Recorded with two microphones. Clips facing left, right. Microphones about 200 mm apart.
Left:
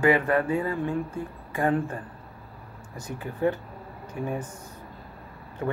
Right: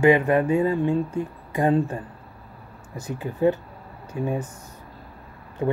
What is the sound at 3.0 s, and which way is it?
Speech, 15° right (ahead or behind).